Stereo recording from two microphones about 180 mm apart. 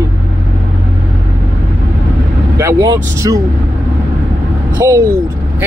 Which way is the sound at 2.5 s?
20° right (ahead or behind).